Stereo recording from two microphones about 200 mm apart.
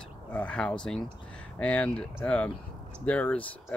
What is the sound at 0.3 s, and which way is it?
Speech, 5° left (ahead or behind).